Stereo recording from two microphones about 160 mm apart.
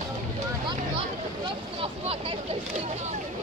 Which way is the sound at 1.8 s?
35° right (ahead or behind).